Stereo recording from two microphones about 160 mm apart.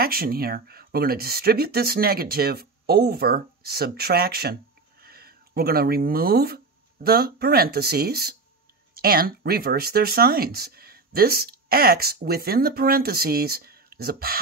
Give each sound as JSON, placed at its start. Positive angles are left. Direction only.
{"t": 0.0, "sound": "speech", "side_deg": -70}